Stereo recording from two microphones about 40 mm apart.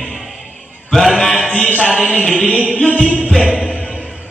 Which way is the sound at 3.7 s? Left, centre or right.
Left.